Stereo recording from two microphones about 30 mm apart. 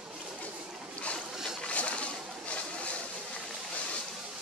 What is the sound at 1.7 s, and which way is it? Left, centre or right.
Pigeon, left.